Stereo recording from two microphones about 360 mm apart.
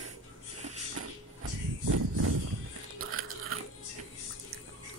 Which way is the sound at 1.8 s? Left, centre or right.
Right.